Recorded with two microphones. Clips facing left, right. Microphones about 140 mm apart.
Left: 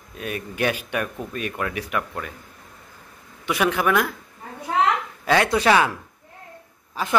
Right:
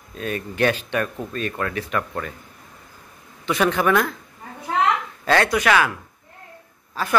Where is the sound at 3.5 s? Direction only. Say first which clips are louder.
Right 2 dB; 5° left (ahead or behind).